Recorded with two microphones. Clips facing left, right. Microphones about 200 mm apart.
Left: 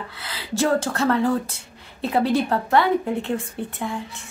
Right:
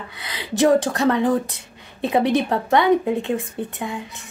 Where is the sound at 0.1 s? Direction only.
15° right (ahead or behind).